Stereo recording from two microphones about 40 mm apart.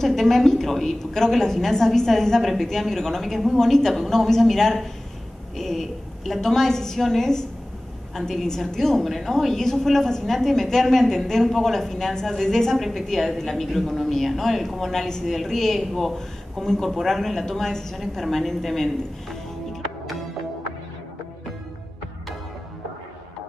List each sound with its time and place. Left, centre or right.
0.0 s a woman's voice: centre